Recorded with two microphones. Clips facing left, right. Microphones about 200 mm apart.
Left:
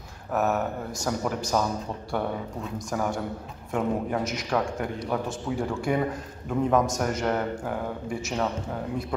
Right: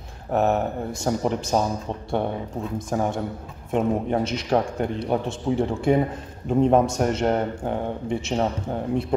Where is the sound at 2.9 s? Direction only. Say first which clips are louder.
Right 3 dB; 25° right (ahead or behind).